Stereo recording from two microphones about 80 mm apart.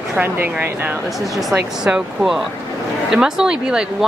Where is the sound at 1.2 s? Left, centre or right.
Centre.